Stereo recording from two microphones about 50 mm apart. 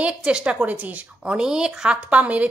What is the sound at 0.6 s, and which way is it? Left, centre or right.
Speech, right.